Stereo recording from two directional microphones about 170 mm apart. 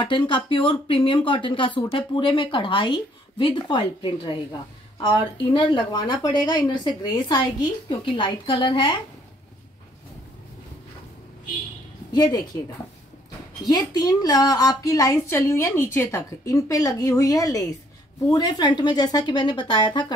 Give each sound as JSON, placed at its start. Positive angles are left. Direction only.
{"t": 0.0, "sound": "speech", "side_deg": 30}
{"t": 12.1, "sound": "speech", "side_deg": 25}
{"t": 13.7, "sound": "speech", "side_deg": 25}